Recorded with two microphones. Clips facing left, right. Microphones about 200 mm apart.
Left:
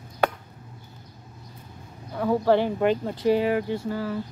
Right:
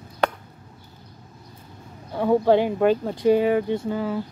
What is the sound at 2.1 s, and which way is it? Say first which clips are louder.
Speech: right 3 dB; 25° right (ahead or behind).